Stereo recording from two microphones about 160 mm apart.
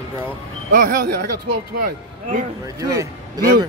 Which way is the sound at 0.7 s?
60° right (ahead or behind).